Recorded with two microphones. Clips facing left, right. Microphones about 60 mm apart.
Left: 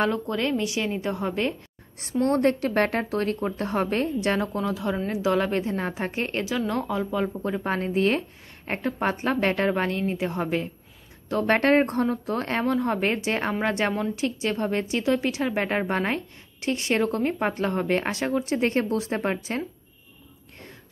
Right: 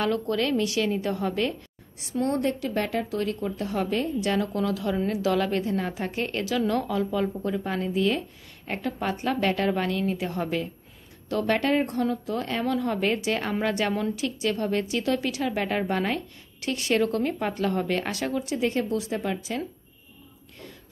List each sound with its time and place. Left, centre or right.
0.0 s speech: left
2.2 s a woman's voice: left
7.6 s a woman's voice: left
18.4 s a woman's voice: left